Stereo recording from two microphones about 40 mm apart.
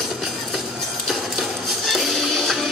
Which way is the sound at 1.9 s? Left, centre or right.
Centre.